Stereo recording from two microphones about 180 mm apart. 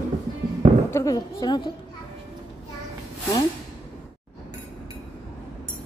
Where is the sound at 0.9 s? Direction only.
20° left (ahead or behind).